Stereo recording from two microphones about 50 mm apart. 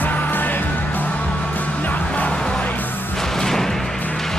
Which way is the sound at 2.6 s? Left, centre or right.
Left.